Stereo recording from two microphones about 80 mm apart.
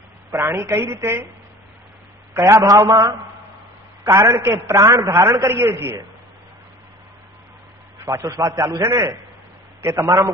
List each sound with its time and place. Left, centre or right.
0.3 s a woman's voice: right
2.3 s a man's voice: right
4.0 s a man's voice: right
4.8 s a man's voice: right
5.4 s a woman's voice: right
8.3 s a woman's voice: right